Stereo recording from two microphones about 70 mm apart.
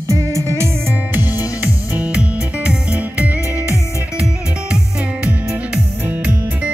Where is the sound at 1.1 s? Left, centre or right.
Right.